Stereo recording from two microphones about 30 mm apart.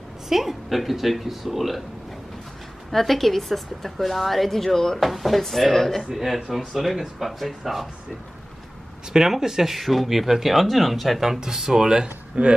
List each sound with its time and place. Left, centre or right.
0.3 s speech: centre
2.9 s a woman's voice: centre
4.9 s a woman's voice: centre
6.1 s speech: centre
9.1 s speech: centre
9.8 s speech: centre
11.1 s speech: centre